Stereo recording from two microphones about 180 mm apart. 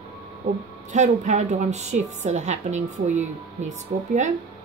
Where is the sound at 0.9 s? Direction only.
40° right (ahead or behind).